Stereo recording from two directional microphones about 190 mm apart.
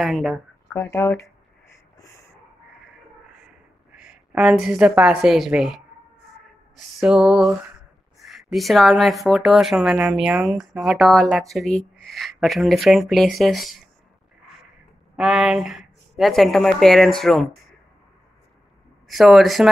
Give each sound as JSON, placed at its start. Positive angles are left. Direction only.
{"t": 0.0, "sound": "speech", "side_deg": 0}
{"t": 0.7, "sound": "speech", "side_deg": 15}
{"t": 3.9, "sound": "a woman's voice", "side_deg": -5}
{"t": 7.0, "sound": "speech", "side_deg": -5}
{"t": 15.1, "sound": "speech", "side_deg": -5}
{"t": 19.0, "sound": "speech", "side_deg": 0}